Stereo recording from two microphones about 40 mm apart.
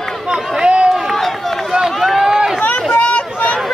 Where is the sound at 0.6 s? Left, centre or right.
Right.